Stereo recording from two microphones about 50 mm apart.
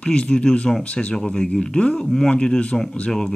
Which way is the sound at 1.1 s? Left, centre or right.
Centre.